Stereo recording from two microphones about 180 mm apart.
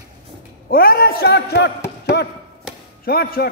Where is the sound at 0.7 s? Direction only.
55° left (ahead or behind).